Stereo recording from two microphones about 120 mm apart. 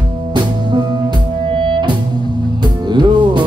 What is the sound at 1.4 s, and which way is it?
Music, 45° right (ahead or behind).